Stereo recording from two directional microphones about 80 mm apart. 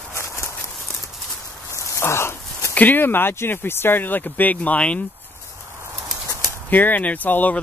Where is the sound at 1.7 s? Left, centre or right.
Left.